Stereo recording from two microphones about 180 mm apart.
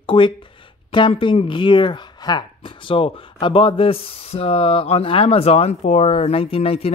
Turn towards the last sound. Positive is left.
turn(degrees=35)  # may be behind; listen again after turning